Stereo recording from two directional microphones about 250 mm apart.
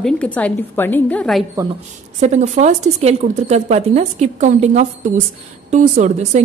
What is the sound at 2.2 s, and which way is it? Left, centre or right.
A woman's voice, right.